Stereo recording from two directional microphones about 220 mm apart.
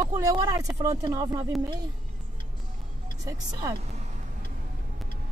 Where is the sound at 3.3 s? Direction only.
15° right (ahead or behind).